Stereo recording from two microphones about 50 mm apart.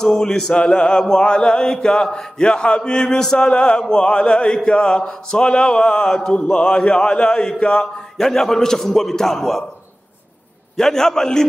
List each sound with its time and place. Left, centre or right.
0.0 s mantra: centre
3.9 s a man's voice: centre
4.6 s mantra: centre
6.3 s a man's voice: centre
8.2 s mantra: centre
10.8 s mantra: centre